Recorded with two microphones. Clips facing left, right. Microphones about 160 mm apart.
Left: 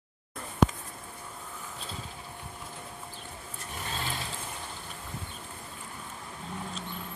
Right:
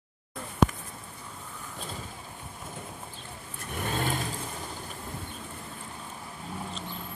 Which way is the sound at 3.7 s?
50° right (ahead or behind).